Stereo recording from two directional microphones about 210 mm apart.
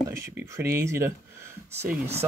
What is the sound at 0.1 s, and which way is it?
Speech, 10° right (ahead or behind).